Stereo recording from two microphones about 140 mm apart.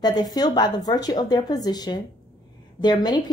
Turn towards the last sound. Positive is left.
turn(degrees=30)  # may be behind; listen again after turning